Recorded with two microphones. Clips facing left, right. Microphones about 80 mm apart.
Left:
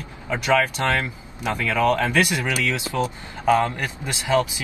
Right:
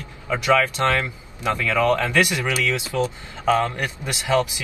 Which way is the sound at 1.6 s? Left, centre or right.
Left.